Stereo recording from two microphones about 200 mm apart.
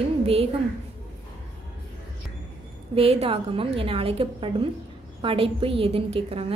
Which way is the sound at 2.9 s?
30° right (ahead or behind).